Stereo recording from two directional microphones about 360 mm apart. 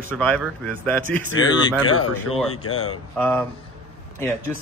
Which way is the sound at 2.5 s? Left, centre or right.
Left.